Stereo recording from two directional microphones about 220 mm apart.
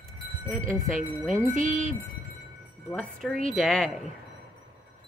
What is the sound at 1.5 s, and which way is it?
Speech, 35° right (ahead or behind).